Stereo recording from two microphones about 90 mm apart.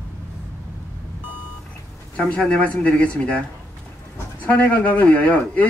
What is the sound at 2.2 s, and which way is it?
Speech, 10° left (ahead or behind).